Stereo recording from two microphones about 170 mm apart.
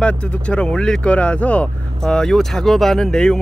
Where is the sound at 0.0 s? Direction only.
5° left (ahead or behind).